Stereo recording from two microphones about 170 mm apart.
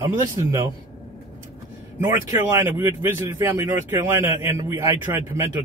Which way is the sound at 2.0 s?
20° right (ahead or behind).